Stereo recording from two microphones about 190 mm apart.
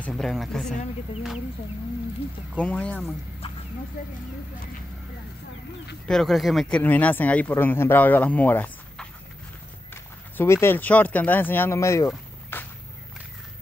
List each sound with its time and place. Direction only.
0.0 s speech: centre (ahead or behind)
2.6 s speech: 5° left (ahead or behind)
6.0 s speech: centre (ahead or behind)
10.3 s speech: 10° left (ahead or behind)
12.1 s a sound: 10° left (ahead or behind)